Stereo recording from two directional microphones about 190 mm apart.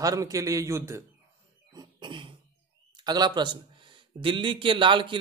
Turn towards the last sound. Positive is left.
turn(degrees=-25)  # may be behind; listen again after turning